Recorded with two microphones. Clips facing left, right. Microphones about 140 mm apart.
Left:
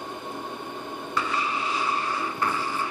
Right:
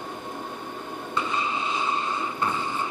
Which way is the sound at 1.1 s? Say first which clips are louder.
Even; 20° right (ahead or behind).